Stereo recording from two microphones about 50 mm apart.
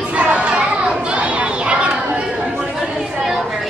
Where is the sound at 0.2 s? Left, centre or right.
Right.